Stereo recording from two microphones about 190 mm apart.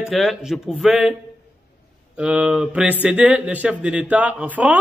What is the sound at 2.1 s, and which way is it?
Speech, 5° right (ahead or behind).